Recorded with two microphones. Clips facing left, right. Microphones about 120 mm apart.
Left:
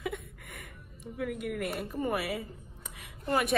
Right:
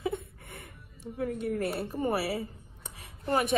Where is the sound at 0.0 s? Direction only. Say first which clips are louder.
Right 4 dB; 30° right (ahead or behind).